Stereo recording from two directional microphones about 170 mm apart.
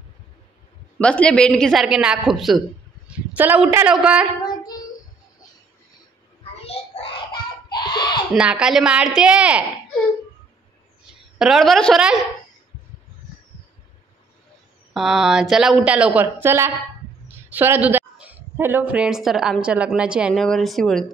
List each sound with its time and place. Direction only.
0.9 s a woman's voice: 5° left (ahead or behind)
4.4 s female singing: 25° left (ahead or behind)
6.6 s a sound: 35° left (ahead or behind)
7.7 s a sound: 25° left (ahead or behind)
8.3 s a woman's voice: 5° right (ahead or behind)
11.3 s a woman's voice: centre (ahead or behind)
15.0 s a woman's voice: centre (ahead or behind)